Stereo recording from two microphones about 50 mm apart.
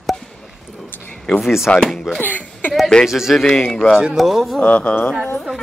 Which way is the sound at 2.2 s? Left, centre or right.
Left.